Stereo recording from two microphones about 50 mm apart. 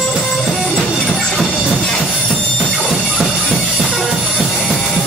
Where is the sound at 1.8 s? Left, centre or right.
Centre.